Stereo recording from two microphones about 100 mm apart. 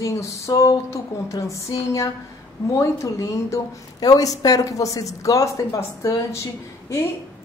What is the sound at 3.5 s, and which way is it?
A woman's voice, 40° left (ahead or behind).